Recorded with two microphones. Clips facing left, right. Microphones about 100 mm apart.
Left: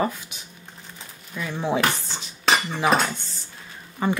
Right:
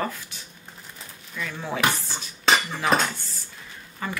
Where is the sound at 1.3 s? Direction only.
15° left (ahead or behind).